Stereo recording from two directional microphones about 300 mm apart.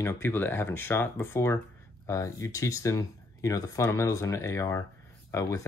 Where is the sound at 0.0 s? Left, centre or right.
Centre.